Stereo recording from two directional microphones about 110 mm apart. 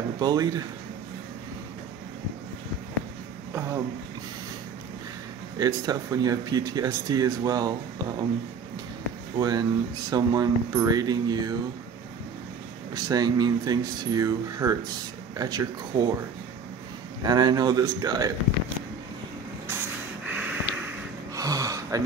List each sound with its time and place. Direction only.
0.2 s speech: 35° right (ahead or behind)
3.5 s a sound: 25° right (ahead or behind)
5.6 s speech: 35° right (ahead or behind)
9.4 s speech: 35° right (ahead or behind)
12.9 s speech: 35° right (ahead or behind)
17.2 s speech: 40° right (ahead or behind)
20.2 s snort: 15° right (ahead or behind)
21.4 s a sound: 30° right (ahead or behind)